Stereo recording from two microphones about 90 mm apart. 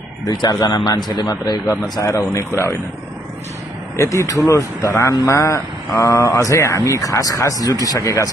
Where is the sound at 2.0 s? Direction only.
40° left (ahead or behind).